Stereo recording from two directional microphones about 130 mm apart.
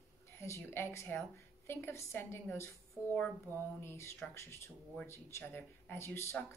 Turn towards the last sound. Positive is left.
turn(degrees=20)  # may be behind; listen again after turning